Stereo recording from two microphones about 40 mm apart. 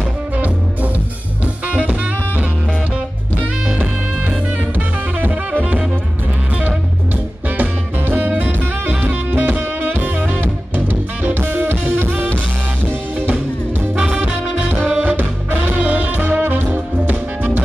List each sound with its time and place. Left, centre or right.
1.4 s music: right
4.7 s music: right
7.4 s music: right
14.7 s music: right